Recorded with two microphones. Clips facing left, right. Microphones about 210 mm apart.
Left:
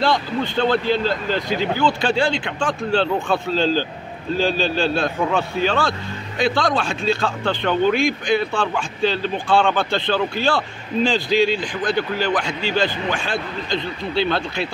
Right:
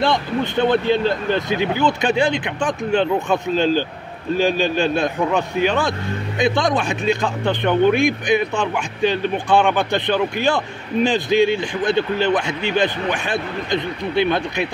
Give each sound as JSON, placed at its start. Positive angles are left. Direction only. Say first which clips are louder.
{"t": 0.0, "sound": "speech", "louder": "right 1 dB", "side_deg": -20}